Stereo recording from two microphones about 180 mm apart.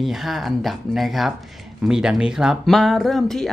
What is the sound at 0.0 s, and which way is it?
Speech, centre (ahead or behind).